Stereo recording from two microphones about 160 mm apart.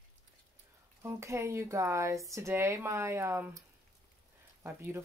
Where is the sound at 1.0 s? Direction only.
15° right (ahead or behind).